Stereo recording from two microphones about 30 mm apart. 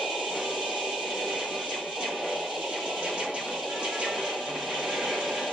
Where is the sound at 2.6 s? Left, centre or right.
Centre.